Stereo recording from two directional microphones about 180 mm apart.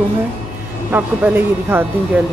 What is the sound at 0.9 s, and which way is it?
Speech, 10° right (ahead or behind).